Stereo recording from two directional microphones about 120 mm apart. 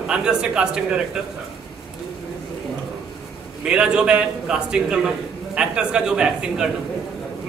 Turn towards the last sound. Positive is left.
turn(degrees=-5)  # may be behind; listen again after turning